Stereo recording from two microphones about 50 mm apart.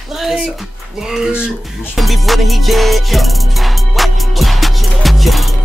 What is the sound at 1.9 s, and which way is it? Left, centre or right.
Music, centre.